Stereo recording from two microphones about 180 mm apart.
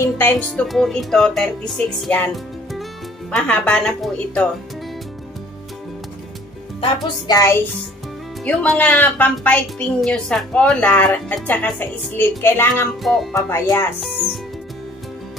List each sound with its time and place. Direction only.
0.0 s speech: 15° left (ahead or behind)
6.8 s speech: 20° left (ahead or behind)
8.5 s a woman's voice: 5° left (ahead or behind)
13.0 s speech: centre (ahead or behind)
13.3 s a woman's voice: 15° left (ahead or behind)